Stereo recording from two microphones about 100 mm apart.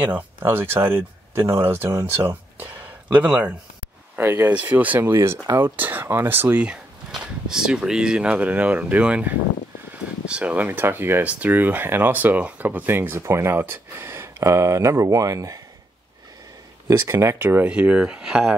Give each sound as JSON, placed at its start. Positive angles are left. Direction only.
{"t": 0.1, "sound": "speech", "side_deg": -20}
{"t": 16.8, "sound": "speech", "side_deg": -25}